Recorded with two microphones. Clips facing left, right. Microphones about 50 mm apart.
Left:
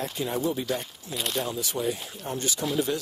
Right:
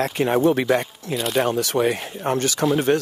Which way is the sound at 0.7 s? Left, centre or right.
Right.